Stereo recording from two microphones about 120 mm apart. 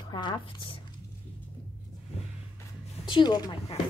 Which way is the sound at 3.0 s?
40° left (ahead or behind).